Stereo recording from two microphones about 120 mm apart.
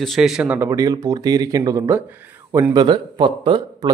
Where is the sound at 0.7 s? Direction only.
25° right (ahead or behind).